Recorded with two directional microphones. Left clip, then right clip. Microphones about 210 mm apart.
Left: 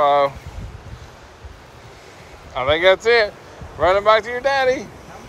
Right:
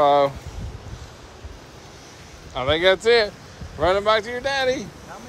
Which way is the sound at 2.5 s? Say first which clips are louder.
Left 3 dB; 15° right (ahead or behind).